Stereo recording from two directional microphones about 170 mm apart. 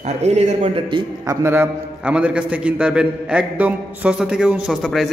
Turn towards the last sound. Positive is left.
turn(degrees=0)  # may be behind; listen again after turning